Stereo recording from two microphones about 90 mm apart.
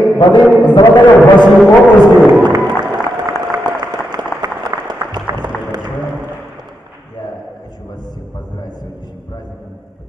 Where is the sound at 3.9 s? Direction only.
45° right (ahead or behind).